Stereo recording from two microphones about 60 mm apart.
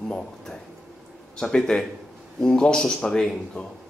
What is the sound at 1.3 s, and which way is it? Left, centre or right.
A man's voice, centre.